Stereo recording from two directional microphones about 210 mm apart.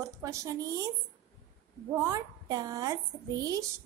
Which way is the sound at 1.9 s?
15° right (ahead or behind).